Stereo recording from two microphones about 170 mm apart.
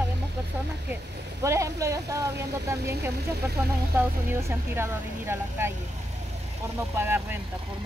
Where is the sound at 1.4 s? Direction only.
15° right (ahead or behind).